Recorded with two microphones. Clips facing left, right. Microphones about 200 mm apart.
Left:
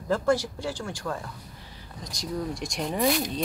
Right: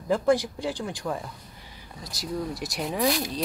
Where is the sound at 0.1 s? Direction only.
15° right (ahead or behind).